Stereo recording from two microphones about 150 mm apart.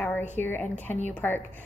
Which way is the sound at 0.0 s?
10° left (ahead or behind).